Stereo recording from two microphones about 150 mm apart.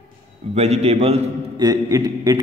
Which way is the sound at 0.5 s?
45° right (ahead or behind).